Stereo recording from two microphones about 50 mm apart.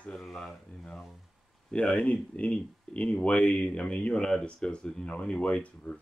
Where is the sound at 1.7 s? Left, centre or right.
Left.